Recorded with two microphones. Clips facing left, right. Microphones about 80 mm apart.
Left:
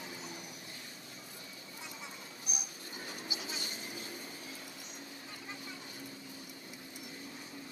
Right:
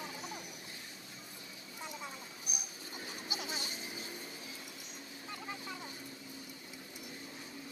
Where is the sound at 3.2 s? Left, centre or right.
Right.